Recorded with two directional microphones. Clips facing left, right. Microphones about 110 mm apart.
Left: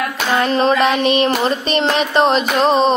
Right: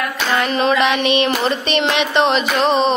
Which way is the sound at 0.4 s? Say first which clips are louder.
Left 2 dB; 35° left (ahead or behind).